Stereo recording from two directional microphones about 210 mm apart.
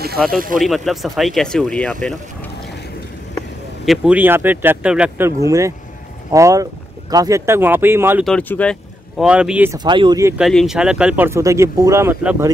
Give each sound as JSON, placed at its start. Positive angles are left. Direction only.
{"t": 0.6, "sound": "speech", "side_deg": 0}
{"t": 3.8, "sound": "speech", "side_deg": 0}
{"t": 8.2, "sound": "speech", "side_deg": 5}
{"t": 9.8, "sound": "speech", "side_deg": -20}
{"t": 10.3, "sound": "speech", "side_deg": 0}